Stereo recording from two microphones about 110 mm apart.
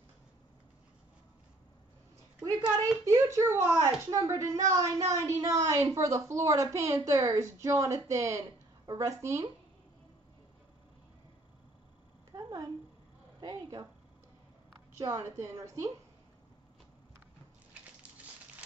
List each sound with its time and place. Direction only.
3.1 s a woman's voice: 25° right (ahead or behind)
12.4 s a sound: 35° right (ahead or behind)
13.4 s a woman's voice: 35° right (ahead or behind)
15.0 s speech: 30° right (ahead or behind)